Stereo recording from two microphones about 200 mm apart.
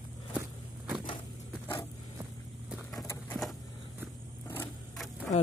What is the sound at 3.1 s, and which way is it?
Vehicle, 5° left (ahead or behind).